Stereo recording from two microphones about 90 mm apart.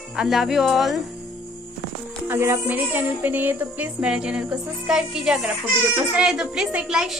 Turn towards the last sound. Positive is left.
turn(degrees=-5)  # may be behind; listen again after turning